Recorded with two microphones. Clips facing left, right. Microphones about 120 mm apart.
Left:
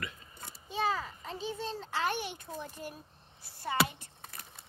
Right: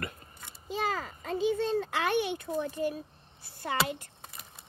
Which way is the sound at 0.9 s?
50° right (ahead or behind).